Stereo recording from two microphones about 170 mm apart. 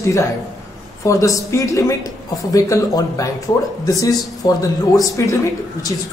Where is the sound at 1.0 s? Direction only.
20° left (ahead or behind).